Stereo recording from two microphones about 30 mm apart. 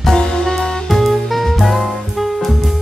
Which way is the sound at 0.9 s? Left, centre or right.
Centre.